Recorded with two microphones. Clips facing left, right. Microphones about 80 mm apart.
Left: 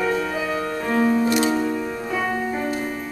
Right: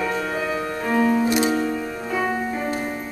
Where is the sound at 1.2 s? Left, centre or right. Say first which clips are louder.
Even; centre.